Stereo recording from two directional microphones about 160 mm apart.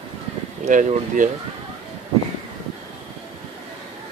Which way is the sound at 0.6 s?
50° right (ahead or behind).